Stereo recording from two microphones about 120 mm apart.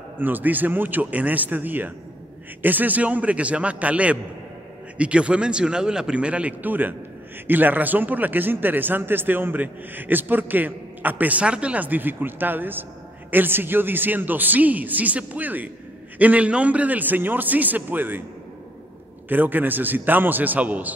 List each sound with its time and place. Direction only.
0.2 s a man's voice: 15° right (ahead or behind)
19.2 s a man's voice: 15° right (ahead or behind)